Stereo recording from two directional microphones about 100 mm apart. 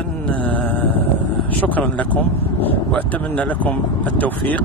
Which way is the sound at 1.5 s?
15° left (ahead or behind).